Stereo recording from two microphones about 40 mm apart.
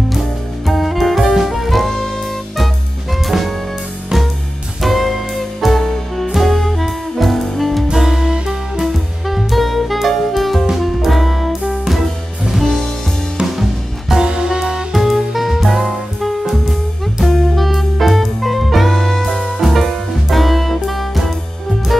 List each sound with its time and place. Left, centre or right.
0.7 s music: centre
3.3 s jazz: centre
4.8 s music: centre
7.9 s music: centre
13.6 s music: centre
14.2 s music: centre
14.9 s music: centre